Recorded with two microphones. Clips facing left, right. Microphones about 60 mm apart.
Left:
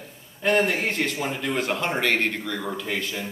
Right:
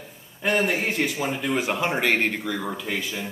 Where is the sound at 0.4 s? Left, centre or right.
Centre.